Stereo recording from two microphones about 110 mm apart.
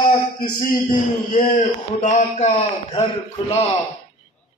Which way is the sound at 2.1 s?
90° left.